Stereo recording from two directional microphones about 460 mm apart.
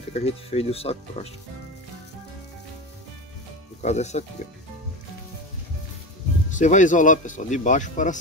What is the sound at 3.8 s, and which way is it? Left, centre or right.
Speech, centre.